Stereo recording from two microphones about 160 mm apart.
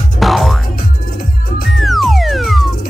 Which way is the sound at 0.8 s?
65° left (ahead or behind).